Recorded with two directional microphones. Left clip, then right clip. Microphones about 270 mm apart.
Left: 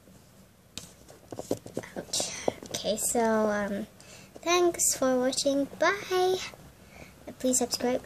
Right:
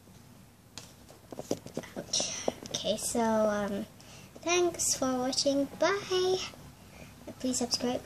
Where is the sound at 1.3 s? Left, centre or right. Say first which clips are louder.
Left 3 dB; left.